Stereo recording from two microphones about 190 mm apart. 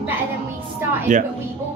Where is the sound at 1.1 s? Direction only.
40° right (ahead or behind).